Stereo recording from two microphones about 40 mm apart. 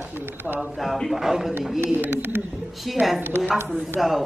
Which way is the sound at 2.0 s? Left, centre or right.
Right.